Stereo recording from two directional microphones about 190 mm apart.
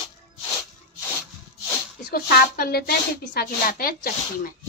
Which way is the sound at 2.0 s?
55° left (ahead or behind).